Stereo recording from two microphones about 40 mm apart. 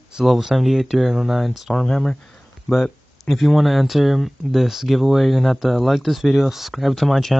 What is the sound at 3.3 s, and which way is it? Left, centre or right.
Speech, centre.